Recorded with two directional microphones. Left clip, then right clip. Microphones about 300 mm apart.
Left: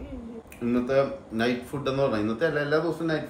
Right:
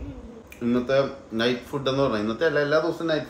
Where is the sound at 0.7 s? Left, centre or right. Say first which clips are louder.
Right 1 dB; centre.